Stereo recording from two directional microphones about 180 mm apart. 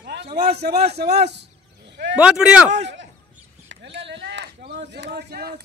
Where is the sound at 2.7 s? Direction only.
85° right.